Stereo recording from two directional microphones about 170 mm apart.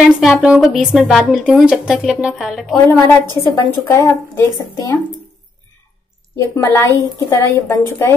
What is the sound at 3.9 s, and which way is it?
Speech, 15° left (ahead or behind).